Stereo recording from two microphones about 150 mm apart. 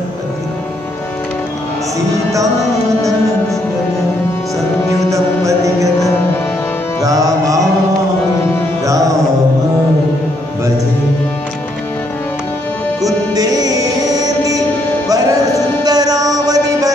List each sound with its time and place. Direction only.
5.1 s music: 20° right (ahead or behind)
7.0 s music: 25° right (ahead or behind)
8.8 s music: 20° right (ahead or behind)
13.0 s music: 25° right (ahead or behind)